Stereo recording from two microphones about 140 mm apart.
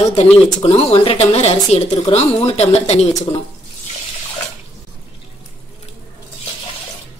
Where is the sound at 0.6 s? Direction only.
45° left (ahead or behind).